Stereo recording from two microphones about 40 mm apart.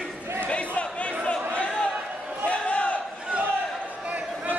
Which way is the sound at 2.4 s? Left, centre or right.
Left.